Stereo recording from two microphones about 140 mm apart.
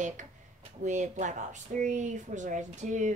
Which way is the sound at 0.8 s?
60° right (ahead or behind).